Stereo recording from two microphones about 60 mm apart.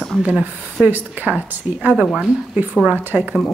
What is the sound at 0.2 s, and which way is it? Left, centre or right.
Speech, right.